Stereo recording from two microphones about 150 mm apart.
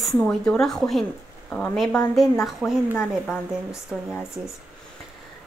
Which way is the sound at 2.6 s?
10° right (ahead or behind).